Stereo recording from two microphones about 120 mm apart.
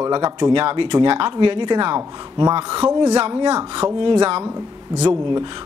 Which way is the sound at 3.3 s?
40° right (ahead or behind).